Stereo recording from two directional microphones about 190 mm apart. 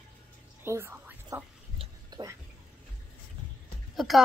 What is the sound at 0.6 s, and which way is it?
Whispering, 10° right (ahead or behind).